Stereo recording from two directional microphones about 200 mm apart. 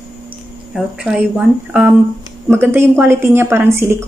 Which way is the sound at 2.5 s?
10° right (ahead or behind).